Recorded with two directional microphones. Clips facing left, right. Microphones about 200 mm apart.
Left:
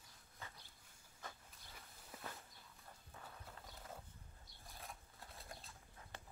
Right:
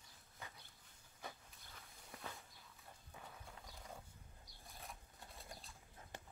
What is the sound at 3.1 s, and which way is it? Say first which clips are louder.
Horse: even; 5° right (ahead or behind).